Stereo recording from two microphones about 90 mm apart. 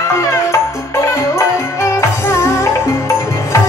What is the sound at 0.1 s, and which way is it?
Music, 30° left (ahead or behind).